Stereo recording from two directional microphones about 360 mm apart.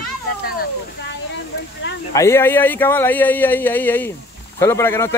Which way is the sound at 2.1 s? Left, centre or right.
Centre.